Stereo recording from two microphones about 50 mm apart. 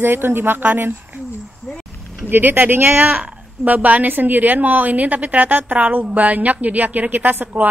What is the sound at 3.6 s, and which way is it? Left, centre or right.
A woman's voice, right.